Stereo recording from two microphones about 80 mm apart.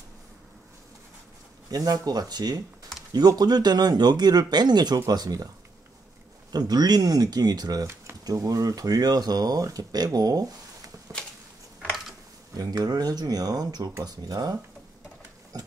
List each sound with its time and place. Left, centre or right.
1.7 s speech: right
6.5 s speech: right
12.5 s speech: right